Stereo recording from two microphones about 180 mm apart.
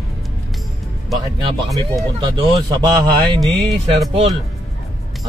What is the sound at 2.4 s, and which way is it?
A man's voice, 20° right (ahead or behind).